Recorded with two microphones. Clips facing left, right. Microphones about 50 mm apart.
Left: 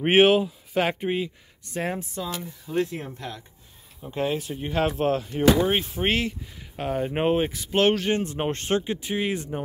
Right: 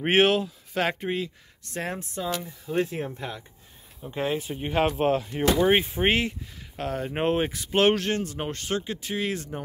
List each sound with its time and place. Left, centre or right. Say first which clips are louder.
0.0 s speech: left 3 dB; centre
2.6 s speech: left 1 dB; right
4.1 s speech: left 1 dB; centre
6.8 s speech: left 3 dB; centre
8.2 s speech: left 4 dB; left
9.0 s speech: left 2 dB; centre